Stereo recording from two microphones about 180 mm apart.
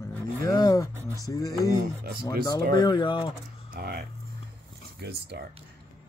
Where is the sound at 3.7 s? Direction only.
60° right (ahead or behind).